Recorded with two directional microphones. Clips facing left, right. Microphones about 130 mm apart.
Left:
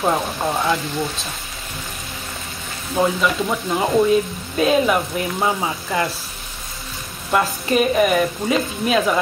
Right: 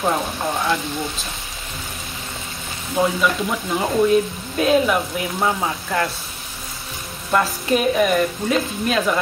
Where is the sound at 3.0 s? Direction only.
5° right (ahead or behind).